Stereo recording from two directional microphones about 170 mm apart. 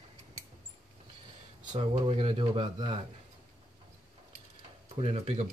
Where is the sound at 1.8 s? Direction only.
35° right (ahead or behind).